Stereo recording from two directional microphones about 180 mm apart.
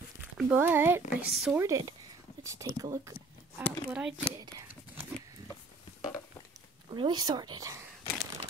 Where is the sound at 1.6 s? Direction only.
20° right (ahead or behind).